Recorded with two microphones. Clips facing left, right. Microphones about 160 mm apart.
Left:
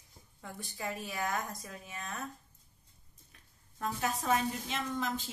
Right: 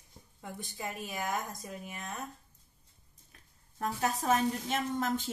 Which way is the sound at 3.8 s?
40° right (ahead or behind).